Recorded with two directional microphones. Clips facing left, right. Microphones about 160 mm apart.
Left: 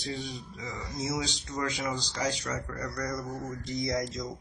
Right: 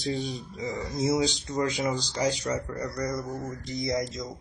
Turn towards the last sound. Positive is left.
turn(degrees=-10)  # may be behind; listen again after turning